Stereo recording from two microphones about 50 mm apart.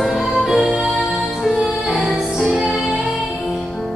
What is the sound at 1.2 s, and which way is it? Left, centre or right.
Music, centre.